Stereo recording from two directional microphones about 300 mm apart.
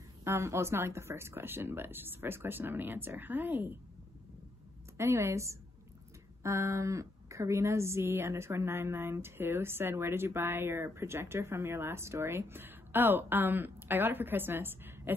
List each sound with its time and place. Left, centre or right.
0.2 s speech: centre
4.9 s speech: centre